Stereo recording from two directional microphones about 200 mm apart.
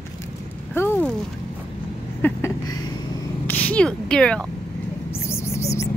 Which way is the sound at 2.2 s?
10° left (ahead or behind).